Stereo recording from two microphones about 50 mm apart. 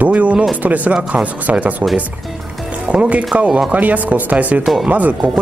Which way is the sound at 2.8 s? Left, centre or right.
Right.